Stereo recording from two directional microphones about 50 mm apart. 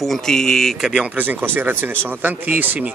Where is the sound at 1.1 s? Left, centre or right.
Right.